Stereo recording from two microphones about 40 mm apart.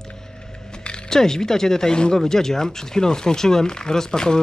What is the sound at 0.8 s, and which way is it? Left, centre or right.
Speech, centre.